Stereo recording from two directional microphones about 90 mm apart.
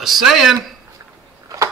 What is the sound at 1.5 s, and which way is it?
Tick-tock, 40° right (ahead or behind).